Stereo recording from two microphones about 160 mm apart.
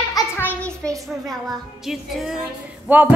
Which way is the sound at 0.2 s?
20° left (ahead or behind).